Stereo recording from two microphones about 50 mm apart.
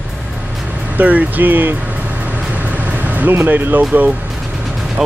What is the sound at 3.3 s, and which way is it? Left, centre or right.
Speech, right.